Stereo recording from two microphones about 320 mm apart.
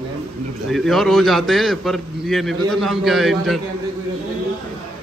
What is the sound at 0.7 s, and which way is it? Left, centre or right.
A man's voice, centre.